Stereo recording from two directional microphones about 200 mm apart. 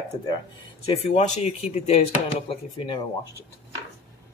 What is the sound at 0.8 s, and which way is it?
A woman's voice, 35° left (ahead or behind).